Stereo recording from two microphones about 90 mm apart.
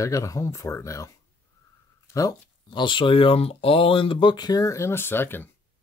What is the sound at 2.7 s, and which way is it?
Speech, 65° left (ahead or behind).